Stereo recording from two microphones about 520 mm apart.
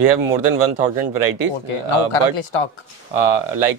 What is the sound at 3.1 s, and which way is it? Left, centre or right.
Speech, right.